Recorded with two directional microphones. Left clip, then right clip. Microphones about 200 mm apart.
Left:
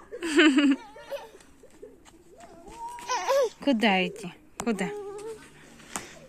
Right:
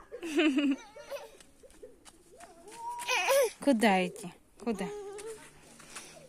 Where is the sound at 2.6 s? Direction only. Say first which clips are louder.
Even; 10° right (ahead or behind).